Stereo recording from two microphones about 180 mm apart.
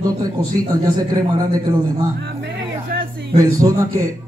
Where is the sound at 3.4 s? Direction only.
20° right (ahead or behind).